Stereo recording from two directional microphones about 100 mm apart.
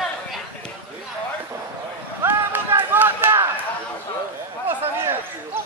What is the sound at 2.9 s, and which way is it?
Chop, 20° right (ahead or behind).